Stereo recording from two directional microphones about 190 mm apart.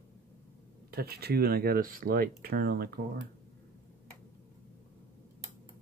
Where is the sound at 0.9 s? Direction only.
55° right (ahead or behind).